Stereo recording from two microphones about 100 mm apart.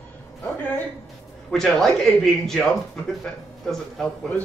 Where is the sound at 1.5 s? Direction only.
5° left (ahead or behind).